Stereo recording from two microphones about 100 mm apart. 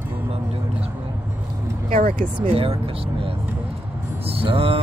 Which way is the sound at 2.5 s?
75° right (ahead or behind).